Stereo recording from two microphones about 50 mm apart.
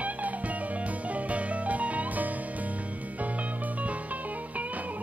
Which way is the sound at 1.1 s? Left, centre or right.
Right.